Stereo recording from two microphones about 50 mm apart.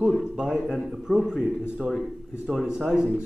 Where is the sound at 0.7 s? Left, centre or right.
Centre.